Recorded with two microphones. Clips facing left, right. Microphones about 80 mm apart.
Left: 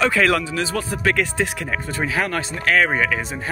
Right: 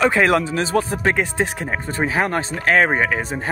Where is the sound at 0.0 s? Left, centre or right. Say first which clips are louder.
Right 2 dB; right.